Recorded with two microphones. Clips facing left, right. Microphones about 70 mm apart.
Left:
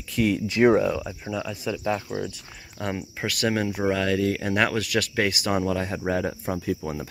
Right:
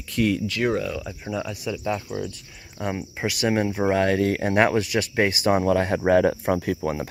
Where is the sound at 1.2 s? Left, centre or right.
Centre.